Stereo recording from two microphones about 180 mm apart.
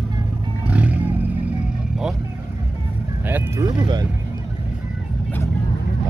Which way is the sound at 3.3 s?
20° right (ahead or behind).